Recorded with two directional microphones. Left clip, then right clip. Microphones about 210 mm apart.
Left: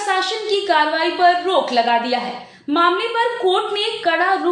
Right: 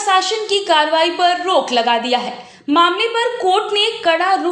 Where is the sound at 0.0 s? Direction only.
30° right (ahead or behind).